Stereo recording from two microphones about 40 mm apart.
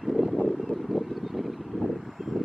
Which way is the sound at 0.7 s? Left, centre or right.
Centre.